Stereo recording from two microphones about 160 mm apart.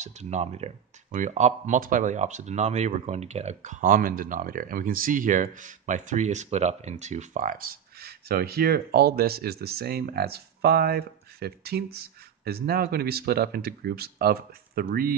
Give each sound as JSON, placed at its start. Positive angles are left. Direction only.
{"t": 0.0, "sound": "speech", "side_deg": -45}